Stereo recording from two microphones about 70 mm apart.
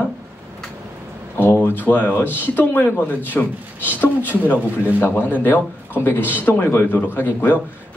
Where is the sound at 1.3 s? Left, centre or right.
Left.